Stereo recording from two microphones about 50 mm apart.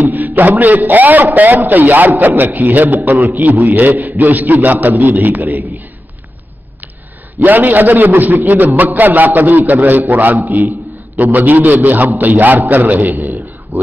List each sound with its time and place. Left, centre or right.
0.0 s music: right
0.4 s a man's voice: right
7.4 s a man's voice: right